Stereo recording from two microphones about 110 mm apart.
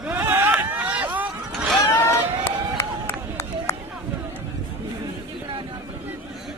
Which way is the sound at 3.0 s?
25° left (ahead or behind).